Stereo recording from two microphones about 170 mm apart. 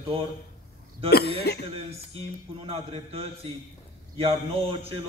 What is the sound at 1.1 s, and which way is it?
Speech, 70° left (ahead or behind).